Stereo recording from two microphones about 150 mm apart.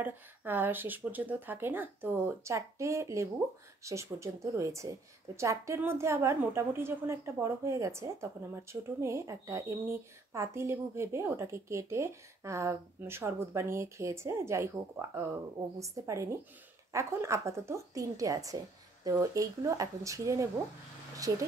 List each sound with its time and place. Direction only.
0.0 s a woman's voice: 10° right (ahead or behind)